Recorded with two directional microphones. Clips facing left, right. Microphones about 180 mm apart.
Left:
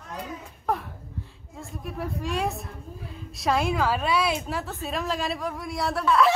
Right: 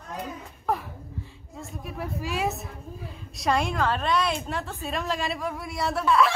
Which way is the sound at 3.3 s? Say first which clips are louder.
Left 1 dB; centre (ahead or behind).